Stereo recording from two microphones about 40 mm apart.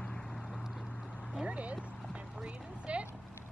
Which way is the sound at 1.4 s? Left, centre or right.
Right.